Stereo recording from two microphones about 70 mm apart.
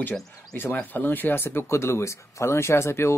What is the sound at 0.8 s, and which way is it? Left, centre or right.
Speech, left.